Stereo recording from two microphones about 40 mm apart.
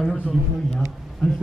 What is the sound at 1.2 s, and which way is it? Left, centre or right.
Speech, left.